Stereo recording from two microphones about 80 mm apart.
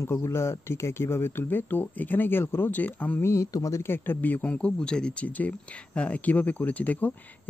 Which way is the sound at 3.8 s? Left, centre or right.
Left.